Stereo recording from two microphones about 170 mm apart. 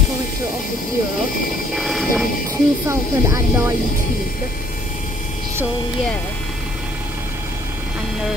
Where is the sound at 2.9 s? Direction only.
15° right (ahead or behind).